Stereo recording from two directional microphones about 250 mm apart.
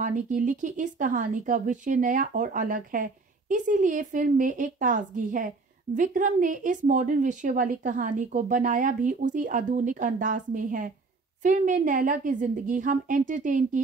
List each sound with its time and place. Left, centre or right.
0.0 s a woman's voice: right